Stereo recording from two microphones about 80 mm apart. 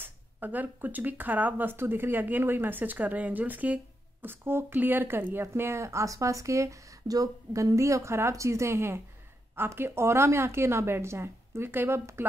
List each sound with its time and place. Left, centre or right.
0.0 s a woman's voice: right